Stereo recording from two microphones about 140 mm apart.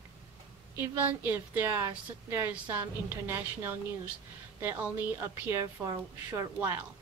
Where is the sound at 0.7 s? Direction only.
15° right (ahead or behind).